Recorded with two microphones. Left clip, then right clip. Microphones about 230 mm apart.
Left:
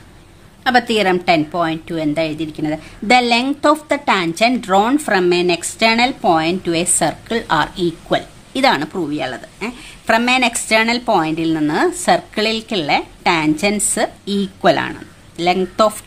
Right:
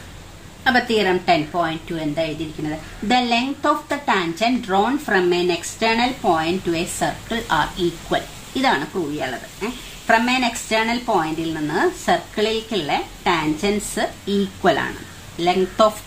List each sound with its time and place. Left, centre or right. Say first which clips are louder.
0.7 s speech: left 3 dB; left